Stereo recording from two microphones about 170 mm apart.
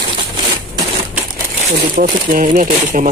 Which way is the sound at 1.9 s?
55° right (ahead or behind).